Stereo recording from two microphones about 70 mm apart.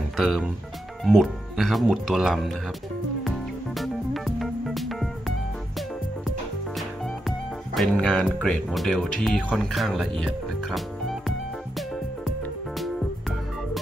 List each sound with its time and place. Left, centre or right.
1.0 s speech: centre
3.3 s music: centre
7.2 s music: centre
7.9 s speech: centre
8.6 s speech: centre